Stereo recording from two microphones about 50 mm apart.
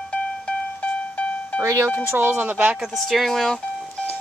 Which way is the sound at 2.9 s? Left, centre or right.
Centre.